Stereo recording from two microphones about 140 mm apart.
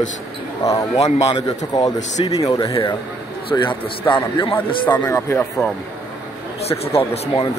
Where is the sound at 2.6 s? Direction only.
25° left (ahead or behind).